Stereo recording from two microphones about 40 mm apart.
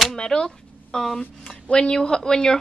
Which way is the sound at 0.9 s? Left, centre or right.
Centre.